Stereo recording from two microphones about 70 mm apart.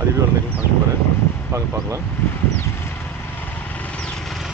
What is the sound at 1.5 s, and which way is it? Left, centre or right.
Speech, right.